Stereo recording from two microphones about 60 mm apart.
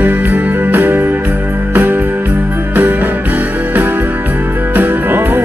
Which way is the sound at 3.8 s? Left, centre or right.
Right.